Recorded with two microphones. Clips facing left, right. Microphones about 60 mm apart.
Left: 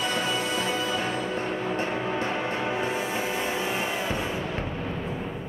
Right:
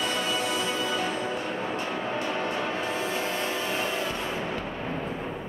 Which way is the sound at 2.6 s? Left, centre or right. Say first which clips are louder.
Left 1 dB; centre.